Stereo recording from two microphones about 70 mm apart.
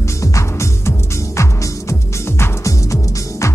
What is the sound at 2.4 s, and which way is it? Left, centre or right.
Music, left.